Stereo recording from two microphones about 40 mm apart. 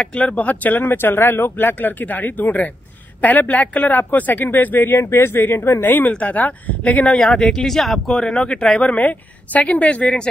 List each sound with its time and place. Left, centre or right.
0.0 s speech: left
4.9 s speech: left
5.4 s speech: left
5.9 s speech: left
6.1 s speech: left
7.2 s speech: centre
8.2 s speech: left
8.9 s speech: left